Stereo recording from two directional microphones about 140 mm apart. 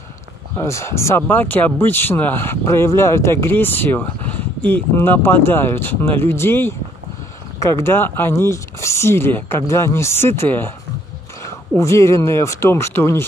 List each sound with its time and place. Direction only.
0.7 s speech: 20° left (ahead or behind)